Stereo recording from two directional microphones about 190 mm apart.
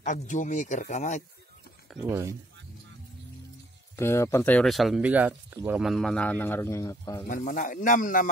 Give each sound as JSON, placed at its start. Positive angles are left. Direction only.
{"t": 0.0, "sound": "speech", "side_deg": 40}
{"t": 2.0, "sound": "speech", "side_deg": -15}
{"t": 3.9, "sound": "a man's voice", "side_deg": 15}
{"t": 7.2, "sound": "speech", "side_deg": 45}